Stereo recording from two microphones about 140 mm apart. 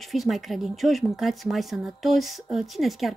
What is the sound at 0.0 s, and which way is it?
Speech, centre (ahead or behind).